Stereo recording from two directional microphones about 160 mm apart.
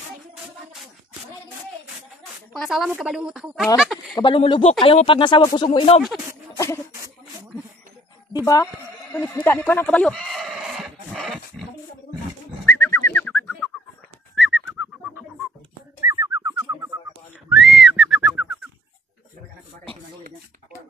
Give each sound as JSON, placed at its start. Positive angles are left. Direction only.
{"t": 2.5, "sound": "speech", "side_deg": 0}
{"t": 4.1, "sound": "speech", "side_deg": 30}
{"t": 6.5, "sound": "a sound", "side_deg": 15}
{"t": 8.3, "sound": "speech", "side_deg": 25}
{"t": 9.1, "sound": "sheep", "side_deg": 10}
{"t": 12.6, "sound": "bird", "side_deg": 15}
{"t": 14.3, "sound": "bird", "side_deg": 0}
{"t": 16.0, "sound": "bird", "side_deg": -20}
{"t": 17.5, "sound": "whistling", "side_deg": 0}